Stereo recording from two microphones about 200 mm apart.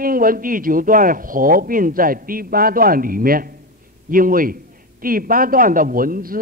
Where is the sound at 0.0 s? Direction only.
45° right (ahead or behind).